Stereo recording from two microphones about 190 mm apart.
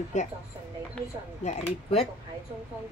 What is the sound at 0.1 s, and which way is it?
Speech, 40° left (ahead or behind).